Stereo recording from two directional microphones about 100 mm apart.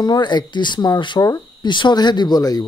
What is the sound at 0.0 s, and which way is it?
Speech, 45° left (ahead or behind).